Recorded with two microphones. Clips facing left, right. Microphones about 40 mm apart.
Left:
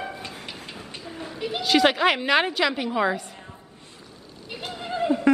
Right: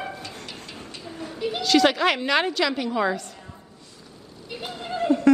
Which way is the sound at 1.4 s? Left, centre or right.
Centre.